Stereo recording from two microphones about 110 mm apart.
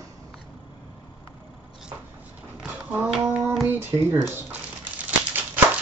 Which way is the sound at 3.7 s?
20° right (ahead or behind).